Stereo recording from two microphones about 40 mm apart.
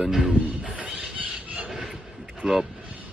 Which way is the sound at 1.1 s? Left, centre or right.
Right.